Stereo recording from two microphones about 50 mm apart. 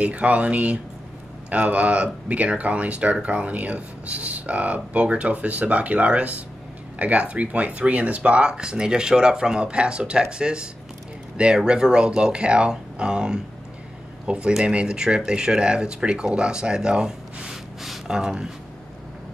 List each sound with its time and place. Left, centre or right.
0.0 s speech: right